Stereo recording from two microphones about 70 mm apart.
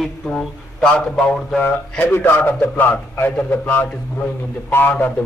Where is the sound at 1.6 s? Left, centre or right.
Left.